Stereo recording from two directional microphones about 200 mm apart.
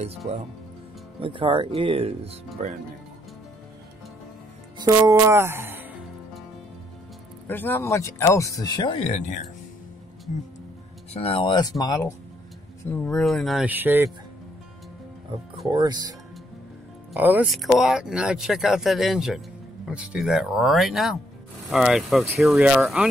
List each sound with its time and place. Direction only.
1.2 s speech: 25° right (ahead or behind)
4.7 s speech: 15° right (ahead or behind)
7.4 s speech: 10° left (ahead or behind); by 9.4 s 30° left (ahead or behind)
11.1 s speech: 25° left (ahead or behind)
12.9 s speech: 5° left (ahead or behind); by 14.1 s 10° right (ahead or behind)
15.7 s speech: 20° right (ahead or behind)
17.1 s speech: 10° right (ahead or behind)